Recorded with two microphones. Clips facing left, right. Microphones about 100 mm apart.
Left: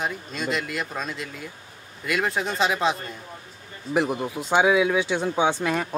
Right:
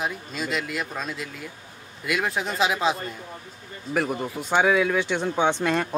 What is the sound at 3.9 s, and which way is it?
Speech, 5° left (ahead or behind).